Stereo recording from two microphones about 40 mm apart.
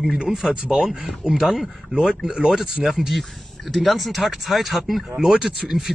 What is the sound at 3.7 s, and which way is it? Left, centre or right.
Speech, centre.